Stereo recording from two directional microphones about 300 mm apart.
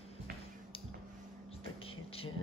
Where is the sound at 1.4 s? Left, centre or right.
Centre.